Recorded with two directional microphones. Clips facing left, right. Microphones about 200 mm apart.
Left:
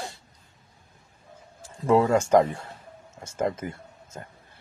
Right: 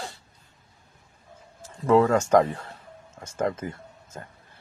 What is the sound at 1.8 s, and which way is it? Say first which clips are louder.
Speech: right 1 dB; 20° left (ahead or behind).